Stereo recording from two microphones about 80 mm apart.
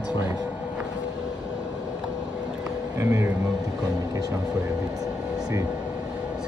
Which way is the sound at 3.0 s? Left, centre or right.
Right.